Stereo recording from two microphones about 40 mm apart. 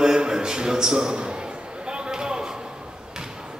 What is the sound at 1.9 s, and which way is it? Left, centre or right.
Basketball bounce, right.